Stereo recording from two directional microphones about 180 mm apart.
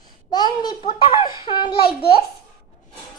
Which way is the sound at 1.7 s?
60° left (ahead or behind).